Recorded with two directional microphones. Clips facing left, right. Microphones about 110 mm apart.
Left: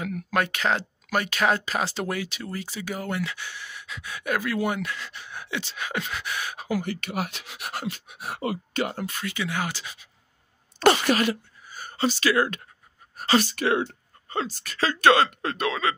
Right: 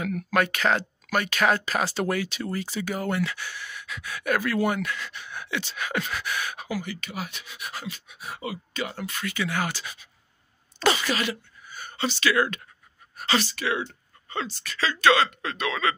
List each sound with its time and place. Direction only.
0.0 s speech: 20° left (ahead or behind)
2.4 s speech: 5° left (ahead or behind)
4.8 s speech: 30° left (ahead or behind)
6.7 s speech: 55° left (ahead or behind)
9.2 s speech: 20° left (ahead or behind)
10.8 s speech: 50° left (ahead or behind)
14.3 s speech: 40° left (ahead or behind)